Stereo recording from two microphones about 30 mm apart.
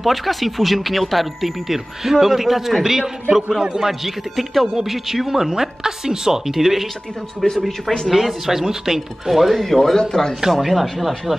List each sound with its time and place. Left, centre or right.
0.0 s speech: centre
1.7 s speech: centre
7.5 s speech: centre
8.1 s speech: centre
9.6 s speech: centre
10.6 s speech: centre